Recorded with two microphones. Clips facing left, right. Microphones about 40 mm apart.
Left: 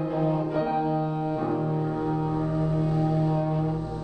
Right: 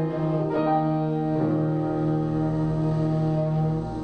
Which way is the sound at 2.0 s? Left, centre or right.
Centre.